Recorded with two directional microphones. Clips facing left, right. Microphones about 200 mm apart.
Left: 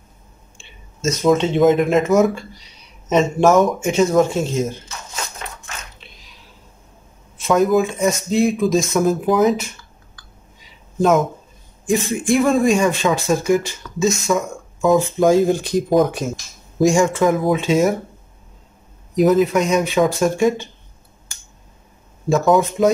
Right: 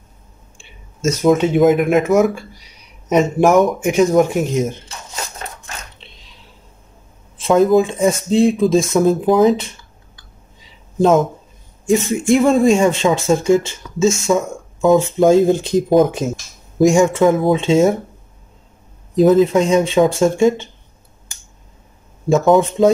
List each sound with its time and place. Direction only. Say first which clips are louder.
1.1 s speech: right 2 dB; 10° right (ahead or behind)
5.4 s biting: right 2 dB; 40° right (ahead or behind)
7.3 s speech: right 3 dB; 30° right (ahead or behind)
11.8 s speech: right 3 dB; 25° right (ahead or behind)
19.1 s speech: right 3 dB; 25° right (ahead or behind)
22.3 s speech: right 3 dB; 25° right (ahead or behind)